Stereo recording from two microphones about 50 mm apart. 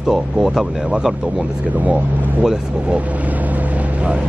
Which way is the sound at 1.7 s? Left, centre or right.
Right.